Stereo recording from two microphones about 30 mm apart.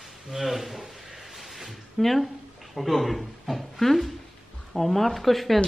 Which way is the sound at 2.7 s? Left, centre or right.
Centre.